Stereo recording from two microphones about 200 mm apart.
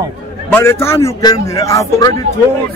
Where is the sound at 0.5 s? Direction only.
10° left (ahead or behind).